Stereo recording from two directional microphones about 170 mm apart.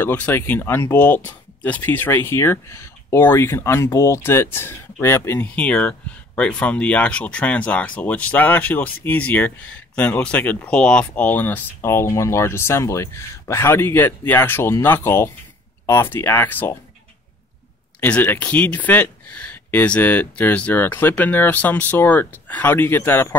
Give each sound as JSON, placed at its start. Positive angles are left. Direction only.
{"t": 0.0, "sound": "speech", "side_deg": 10}
{"t": 18.0, "sound": "speech", "side_deg": 10}